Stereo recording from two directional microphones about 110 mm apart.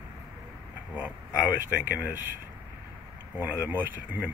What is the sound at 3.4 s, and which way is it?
Speech, 15° right (ahead or behind).